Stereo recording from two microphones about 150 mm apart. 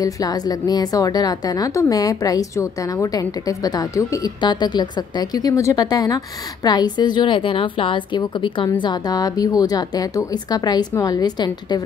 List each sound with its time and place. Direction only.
0.0 s a woman's voice: 25° left (ahead or behind)